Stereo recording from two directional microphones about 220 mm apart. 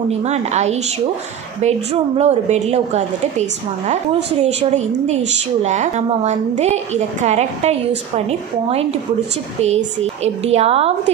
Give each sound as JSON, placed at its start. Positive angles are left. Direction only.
{"t": 0.2, "sound": "a woman's voice", "side_deg": -30}